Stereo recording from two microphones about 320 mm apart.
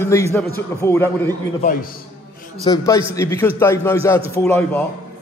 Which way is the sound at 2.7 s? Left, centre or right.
Centre.